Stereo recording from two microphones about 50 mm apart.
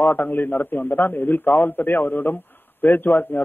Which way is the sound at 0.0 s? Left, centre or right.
Left.